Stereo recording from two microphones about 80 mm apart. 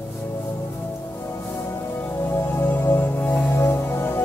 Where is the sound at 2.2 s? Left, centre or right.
Left.